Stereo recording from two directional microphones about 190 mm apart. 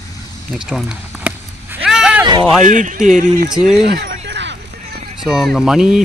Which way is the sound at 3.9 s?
65° right (ahead or behind).